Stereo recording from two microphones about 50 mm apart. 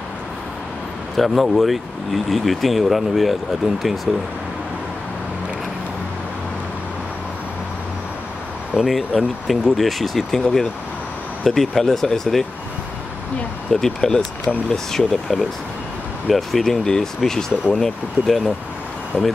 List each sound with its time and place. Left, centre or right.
1.1 s speech: centre
8.7 s speech: centre
11.4 s speech: centre
13.7 s speech: centre
19.1 s speech: left